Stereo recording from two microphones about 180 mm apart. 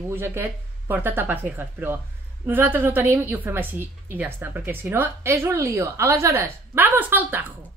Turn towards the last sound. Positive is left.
turn(degrees=-10)  # may be behind; listen again after turning